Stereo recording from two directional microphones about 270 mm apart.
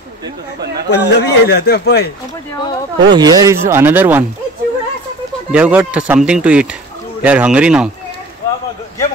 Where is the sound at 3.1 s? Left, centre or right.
Centre.